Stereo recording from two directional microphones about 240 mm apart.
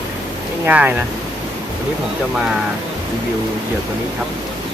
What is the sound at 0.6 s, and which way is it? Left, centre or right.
Speech, centre.